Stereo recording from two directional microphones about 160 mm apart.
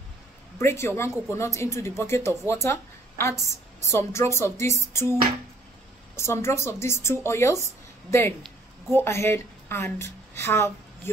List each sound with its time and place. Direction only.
0.6 s speech: 15° left (ahead or behind)
6.1 s speech: 15° left (ahead or behind)